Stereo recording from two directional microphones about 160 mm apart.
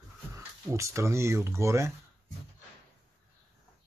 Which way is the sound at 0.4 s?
15° right (ahead or behind).